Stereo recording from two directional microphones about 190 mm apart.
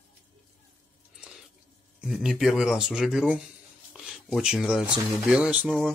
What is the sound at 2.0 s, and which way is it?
Speech, centre (ahead or behind).